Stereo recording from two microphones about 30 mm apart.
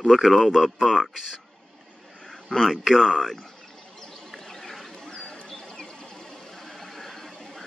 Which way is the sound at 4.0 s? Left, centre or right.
Centre.